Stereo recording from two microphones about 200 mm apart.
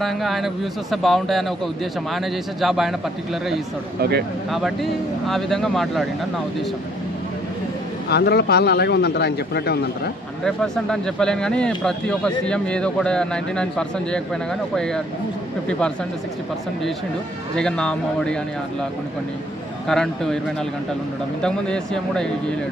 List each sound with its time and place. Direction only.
0.0 s speech: centre (ahead or behind)
2.6 s speech: centre (ahead or behind)
4.5 s speech: centre (ahead or behind)
8.1 s speech: 55° left (ahead or behind)
10.4 s speech: 5° left (ahead or behind)
17.6 s speech: 5° left (ahead or behind)
19.9 s speech: centre (ahead or behind)
21.4 s speech: 5° left (ahead or behind)